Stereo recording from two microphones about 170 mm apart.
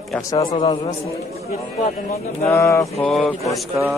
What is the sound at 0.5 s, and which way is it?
Speech, 30° left (ahead or behind).